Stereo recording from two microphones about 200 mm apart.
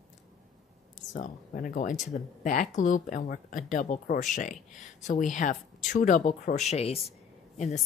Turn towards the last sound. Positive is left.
turn(degrees=35)  # may be behind; listen again after turning